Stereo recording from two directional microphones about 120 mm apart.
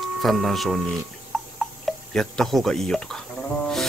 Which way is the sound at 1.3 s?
Centre (ahead or behind).